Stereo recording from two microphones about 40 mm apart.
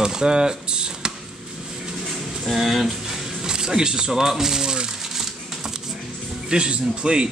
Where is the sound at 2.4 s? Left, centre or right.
Centre.